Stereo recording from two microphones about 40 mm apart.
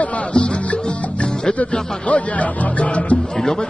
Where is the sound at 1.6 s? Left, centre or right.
Left.